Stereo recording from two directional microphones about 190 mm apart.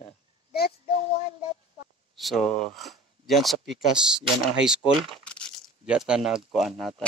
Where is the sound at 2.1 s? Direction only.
Centre (ahead or behind).